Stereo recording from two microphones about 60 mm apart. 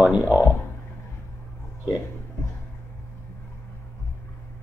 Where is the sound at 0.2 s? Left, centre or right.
Left.